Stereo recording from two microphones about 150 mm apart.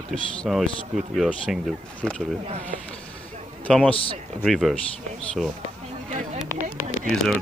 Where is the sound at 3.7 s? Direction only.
10° left (ahead or behind).